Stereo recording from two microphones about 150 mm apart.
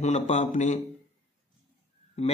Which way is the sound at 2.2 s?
45° left (ahead or behind).